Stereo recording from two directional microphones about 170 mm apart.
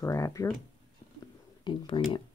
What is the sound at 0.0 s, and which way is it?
Speech, 20° left (ahead or behind).